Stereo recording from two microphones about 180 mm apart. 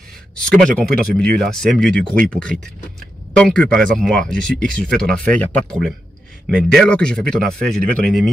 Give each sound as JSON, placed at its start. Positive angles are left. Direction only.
{"t": 0.4, "sound": "speech", "side_deg": 5}